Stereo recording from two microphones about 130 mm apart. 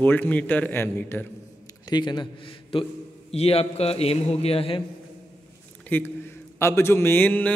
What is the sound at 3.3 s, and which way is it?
A man's voice, 50° left (ahead or behind).